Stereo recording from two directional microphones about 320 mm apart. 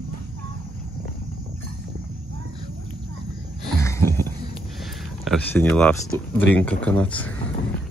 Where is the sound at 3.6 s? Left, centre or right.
Centre.